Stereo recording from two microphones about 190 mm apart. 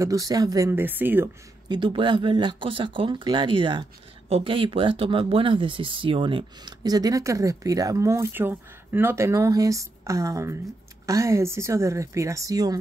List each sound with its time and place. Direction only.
0.0 s a woman's voice: 15° right (ahead or behind)
1.7 s a woman's voice: 25° right (ahead or behind)